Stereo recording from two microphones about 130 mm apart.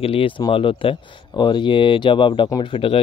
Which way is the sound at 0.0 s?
45° left (ahead or behind).